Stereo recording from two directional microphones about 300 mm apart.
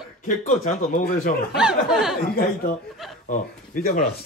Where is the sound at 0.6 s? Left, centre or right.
Left.